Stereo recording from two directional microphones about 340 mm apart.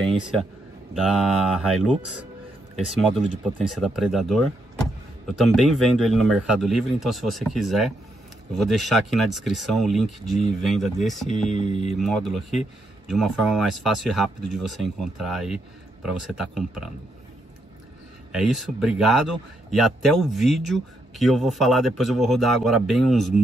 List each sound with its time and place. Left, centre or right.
0.0 s speech: centre
2.9 s speech: centre
11.5 s speech: centre
12.0 s speech: centre
18.3 s speech: centre